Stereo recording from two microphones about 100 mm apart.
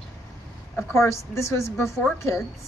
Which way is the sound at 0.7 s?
25° left (ahead or behind).